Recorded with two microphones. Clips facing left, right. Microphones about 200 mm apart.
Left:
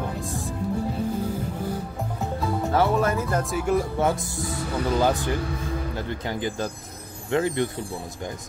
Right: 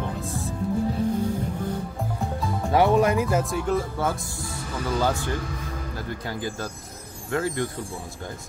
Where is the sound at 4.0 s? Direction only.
20° left (ahead or behind).